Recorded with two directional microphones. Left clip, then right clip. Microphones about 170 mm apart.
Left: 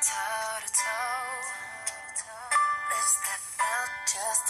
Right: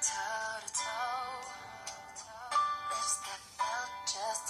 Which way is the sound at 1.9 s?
15° left (ahead or behind).